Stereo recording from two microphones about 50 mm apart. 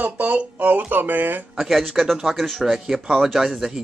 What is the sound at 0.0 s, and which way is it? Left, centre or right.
Speech, right.